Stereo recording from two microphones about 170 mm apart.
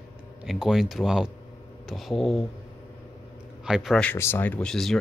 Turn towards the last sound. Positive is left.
turn(degrees=0)  # may be behind; listen again after turning